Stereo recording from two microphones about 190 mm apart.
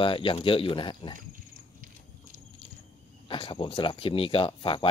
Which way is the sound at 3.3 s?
25° left (ahead or behind).